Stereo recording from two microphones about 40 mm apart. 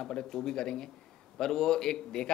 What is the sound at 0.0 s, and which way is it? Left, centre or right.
Speech, centre.